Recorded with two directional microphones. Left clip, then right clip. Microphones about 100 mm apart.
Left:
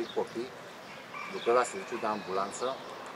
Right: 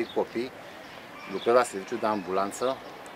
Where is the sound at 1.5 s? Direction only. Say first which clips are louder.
Right 5 dB; 45° right (ahead or behind).